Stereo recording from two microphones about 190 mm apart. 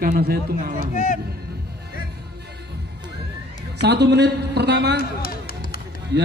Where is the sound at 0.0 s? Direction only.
55° right (ahead or behind).